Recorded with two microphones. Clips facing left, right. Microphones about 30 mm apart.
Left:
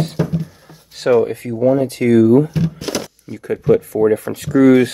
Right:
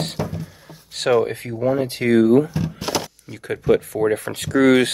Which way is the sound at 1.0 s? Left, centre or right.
Right.